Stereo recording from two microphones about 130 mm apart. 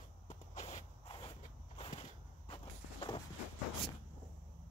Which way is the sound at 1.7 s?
55° left (ahead or behind).